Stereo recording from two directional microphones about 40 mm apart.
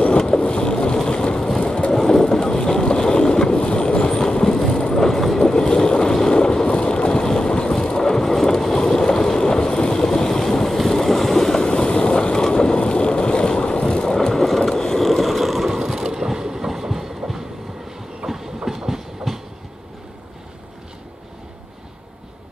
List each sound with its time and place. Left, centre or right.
0.2 s vehicle: left
5.5 s boat: centre
10.9 s vehicle: centre
14.8 s mechanisms: centre
15.0 s ratchet: centre
15.7 s vehicle: centre
18.2 s train: right
18.7 s train: centre